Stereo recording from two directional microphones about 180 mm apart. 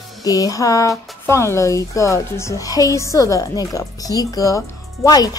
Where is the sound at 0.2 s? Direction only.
20° left (ahead or behind).